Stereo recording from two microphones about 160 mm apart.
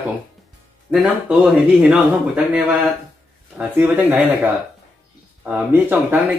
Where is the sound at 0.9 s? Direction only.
5° right (ahead or behind).